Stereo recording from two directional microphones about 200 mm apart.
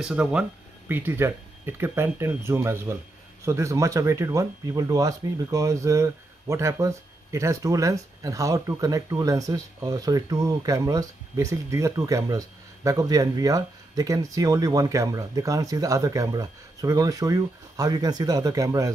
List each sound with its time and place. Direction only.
0.0 s speech: 5° right (ahead or behind)